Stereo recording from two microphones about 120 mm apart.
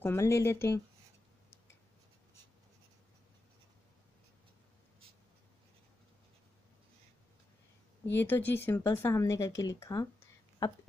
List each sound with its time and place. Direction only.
0.0 s speech: 20° left (ahead or behind)
8.1 s speech: 15° left (ahead or behind)